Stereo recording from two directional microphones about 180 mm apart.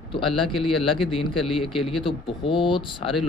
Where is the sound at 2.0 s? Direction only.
30° left (ahead or behind).